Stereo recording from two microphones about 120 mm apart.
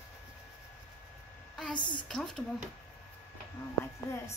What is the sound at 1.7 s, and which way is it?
Speech, 40° left (ahead or behind).